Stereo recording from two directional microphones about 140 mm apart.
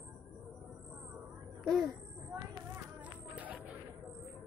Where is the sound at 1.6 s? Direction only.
Centre (ahead or behind).